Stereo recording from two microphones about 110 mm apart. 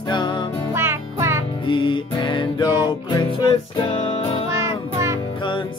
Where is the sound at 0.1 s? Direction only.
45° left (ahead or behind).